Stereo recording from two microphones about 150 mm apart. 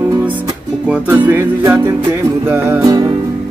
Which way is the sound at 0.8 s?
10° right (ahead or behind).